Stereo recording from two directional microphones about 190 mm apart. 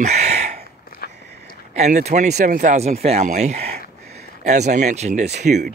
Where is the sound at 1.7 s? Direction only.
35° right (ahead or behind).